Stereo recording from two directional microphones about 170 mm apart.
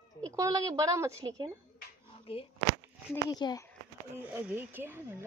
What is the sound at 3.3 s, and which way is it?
Speech, 25° left (ahead or behind).